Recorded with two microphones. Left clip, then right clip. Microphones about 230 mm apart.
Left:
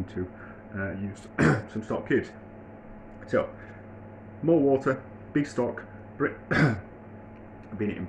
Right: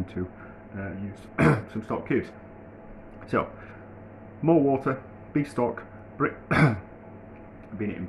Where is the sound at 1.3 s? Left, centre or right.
Centre.